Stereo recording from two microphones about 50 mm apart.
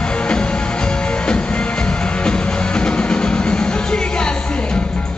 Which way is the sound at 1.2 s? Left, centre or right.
Centre.